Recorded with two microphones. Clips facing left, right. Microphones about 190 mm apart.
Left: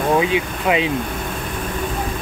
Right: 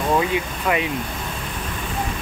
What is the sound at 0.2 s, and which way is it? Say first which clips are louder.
Speech: left 3 dB; 20° left (ahead or behind).